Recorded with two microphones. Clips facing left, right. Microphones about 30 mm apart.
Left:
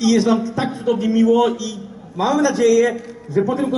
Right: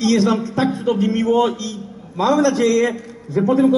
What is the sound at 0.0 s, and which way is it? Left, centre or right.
A man's voice, centre.